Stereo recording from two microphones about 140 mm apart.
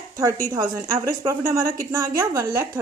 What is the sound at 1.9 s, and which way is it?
Speech, 20° right (ahead or behind).